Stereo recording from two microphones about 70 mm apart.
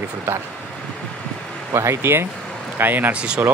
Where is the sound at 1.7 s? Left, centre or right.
Right.